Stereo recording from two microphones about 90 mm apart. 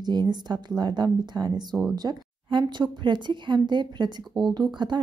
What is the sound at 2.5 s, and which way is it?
Speech, 60° right (ahead or behind).